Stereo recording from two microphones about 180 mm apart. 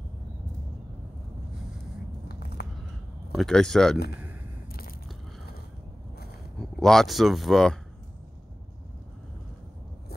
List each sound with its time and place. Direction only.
2.6 s a sound: 65° left (ahead or behind)
3.3 s speech: centre (ahead or behind)
6.6 s speech: centre (ahead or behind)